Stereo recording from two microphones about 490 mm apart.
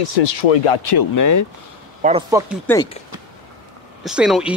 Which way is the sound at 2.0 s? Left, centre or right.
Centre.